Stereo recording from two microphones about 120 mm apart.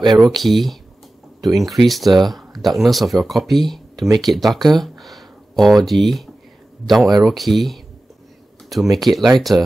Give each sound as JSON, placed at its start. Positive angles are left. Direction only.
{"t": 0.0, "sound": "speech", "side_deg": -35}
{"t": 0.3, "sound": "speech", "side_deg": 0}
{"t": 8.9, "sound": "speech", "side_deg": 0}
{"t": 9.5, "sound": "speech", "side_deg": -25}